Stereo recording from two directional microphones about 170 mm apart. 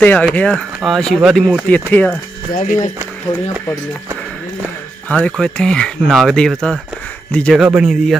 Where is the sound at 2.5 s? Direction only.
45° left (ahead or behind).